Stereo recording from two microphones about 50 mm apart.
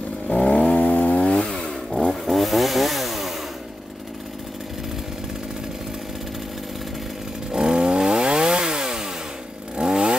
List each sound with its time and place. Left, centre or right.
0.3 s vehicle: left
1.3 s chainsaw: centre
1.9 s chainsaw: centre
7.5 s chainsaw: centre